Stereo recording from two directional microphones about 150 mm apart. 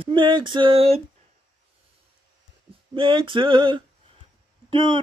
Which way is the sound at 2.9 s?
35° right (ahead or behind).